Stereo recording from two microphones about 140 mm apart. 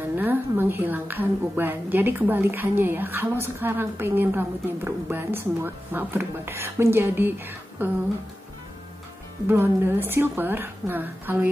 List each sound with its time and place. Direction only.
0.2 s a woman's voice: 15° right (ahead or behind)
9.5 s a woman's voice: 15° right (ahead or behind)